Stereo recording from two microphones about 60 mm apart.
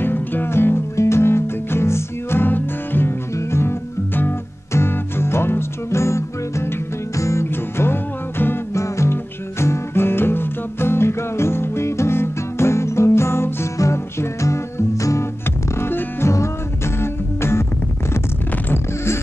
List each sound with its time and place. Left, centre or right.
0.0 s music: left
7.5 s music: left
8.7 s music: left
15.7 s music: left
16.3 s music: left